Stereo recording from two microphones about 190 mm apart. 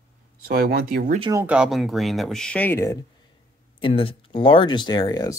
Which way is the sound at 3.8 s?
30° left (ahead or behind).